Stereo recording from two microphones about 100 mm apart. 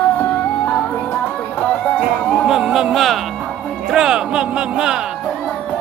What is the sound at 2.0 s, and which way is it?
Music, 5° right (ahead or behind).